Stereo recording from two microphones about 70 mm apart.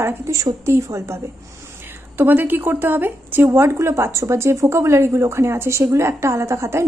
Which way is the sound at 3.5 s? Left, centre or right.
Right.